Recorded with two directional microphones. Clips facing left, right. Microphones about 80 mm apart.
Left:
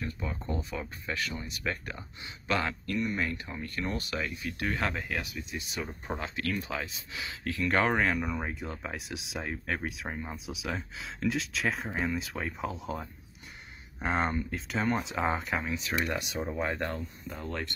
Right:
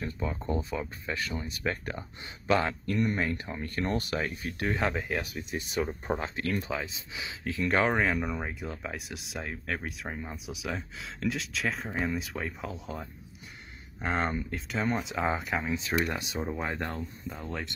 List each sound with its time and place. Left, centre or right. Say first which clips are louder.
0.3 s speech: right 3 dB; right
4.8 s speech: right 3 dB; centre
5.5 s speech: right 9 dB; right
6.2 s speech: right 2 dB; right
7.7 s speech: right 1 dB; centre
15.7 s speech: right 3 dB; right
16.3 s speech: left 1 dB; centre